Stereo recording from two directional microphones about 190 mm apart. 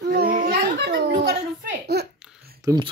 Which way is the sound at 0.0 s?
60° right (ahead or behind).